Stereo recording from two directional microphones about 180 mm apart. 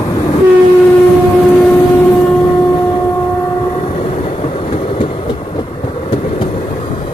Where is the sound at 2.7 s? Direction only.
25° left (ahead or behind).